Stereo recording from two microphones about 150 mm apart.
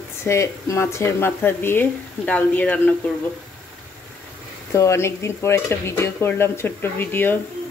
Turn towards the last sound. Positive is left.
turn(degrees=15)  # may be behind; listen again after turning